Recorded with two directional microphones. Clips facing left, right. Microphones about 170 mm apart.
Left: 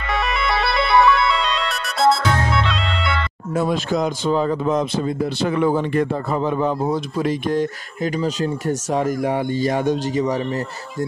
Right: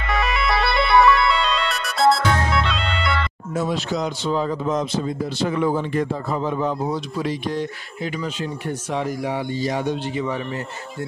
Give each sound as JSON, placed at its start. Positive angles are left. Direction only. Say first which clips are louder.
{"t": 0.0, "sound": "music", "louder": "even", "side_deg": 0}
{"t": 3.5, "sound": "a man's voice", "louder": "left 3 dB", "side_deg": 55}